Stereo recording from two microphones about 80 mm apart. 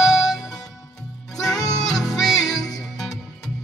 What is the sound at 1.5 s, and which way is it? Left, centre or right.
Music, left.